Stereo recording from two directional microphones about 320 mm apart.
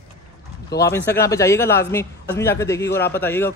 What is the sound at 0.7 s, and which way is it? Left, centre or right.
Speech, left.